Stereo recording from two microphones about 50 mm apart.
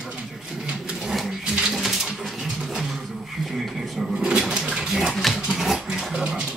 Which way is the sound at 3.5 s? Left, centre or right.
Centre.